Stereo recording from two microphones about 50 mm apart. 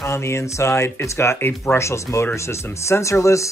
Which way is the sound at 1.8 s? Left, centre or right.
Left.